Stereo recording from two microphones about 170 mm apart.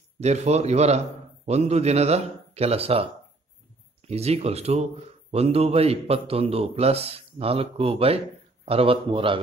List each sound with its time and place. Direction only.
0.2 s a man's voice: 40° right (ahead or behind)
4.1 s a man's voice: 40° right (ahead or behind)